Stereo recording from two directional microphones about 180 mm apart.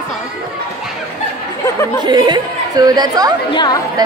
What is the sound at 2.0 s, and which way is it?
Speech, 25° right (ahead or behind).